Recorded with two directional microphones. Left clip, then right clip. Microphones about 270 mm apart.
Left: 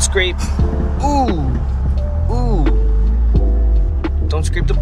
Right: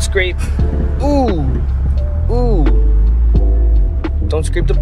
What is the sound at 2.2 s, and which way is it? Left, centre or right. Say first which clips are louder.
Speech: right 5 dB; centre.